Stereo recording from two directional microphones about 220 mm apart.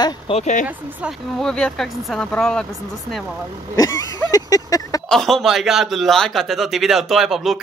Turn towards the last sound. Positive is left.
turn(degrees=0)  # may be behind; listen again after turning